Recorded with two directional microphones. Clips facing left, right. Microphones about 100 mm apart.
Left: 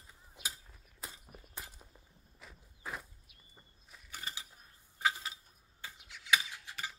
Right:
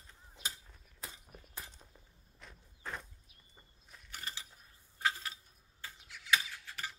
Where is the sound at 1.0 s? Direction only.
10° left (ahead or behind).